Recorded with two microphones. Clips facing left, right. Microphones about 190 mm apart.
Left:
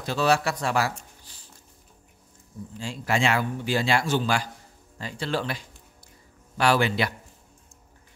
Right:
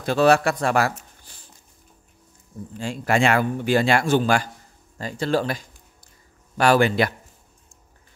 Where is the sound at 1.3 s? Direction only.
50° right (ahead or behind).